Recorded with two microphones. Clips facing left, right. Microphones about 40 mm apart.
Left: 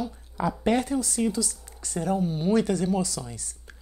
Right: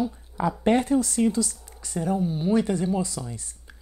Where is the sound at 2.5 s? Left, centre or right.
Right.